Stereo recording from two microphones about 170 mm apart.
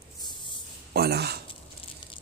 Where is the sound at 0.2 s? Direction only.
25° left (ahead or behind).